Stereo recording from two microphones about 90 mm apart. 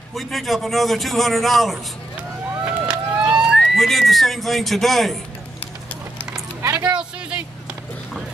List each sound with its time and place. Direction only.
0.1 s a man's voice: centre (ahead or behind)
2.6 s vehicle: 10° right (ahead or behind)
3.5 s a man's voice: 5° left (ahead or behind)
6.3 s a sound: 40° right (ahead or behind)
6.9 s speech: 10° right (ahead or behind)